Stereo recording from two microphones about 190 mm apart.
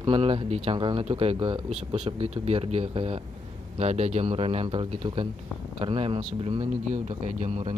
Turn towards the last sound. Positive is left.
turn(degrees=-30)  # may be behind; listen again after turning